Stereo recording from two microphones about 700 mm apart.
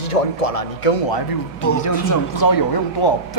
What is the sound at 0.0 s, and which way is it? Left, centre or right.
Speech, left.